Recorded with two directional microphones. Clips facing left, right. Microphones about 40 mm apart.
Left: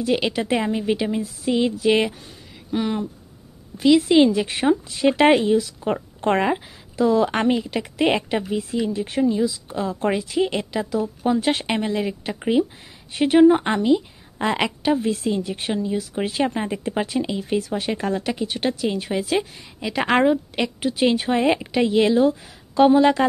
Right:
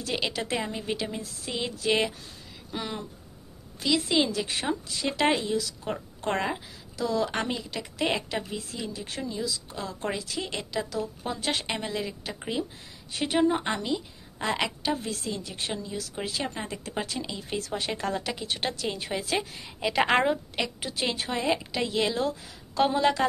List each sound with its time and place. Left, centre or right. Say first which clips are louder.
0.0 s a woman's voice: left 9 dB; centre; by 5.6 s left
5.6 s a woman's voice: left 8 dB; left
17.4 s a woman's voice: left 8 dB; centre
21.4 s a woman's voice: left 8 dB; left
21.7 s a woman's voice: left 10 dB; centre